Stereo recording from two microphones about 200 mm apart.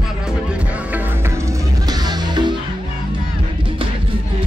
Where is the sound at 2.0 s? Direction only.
20° right (ahead or behind).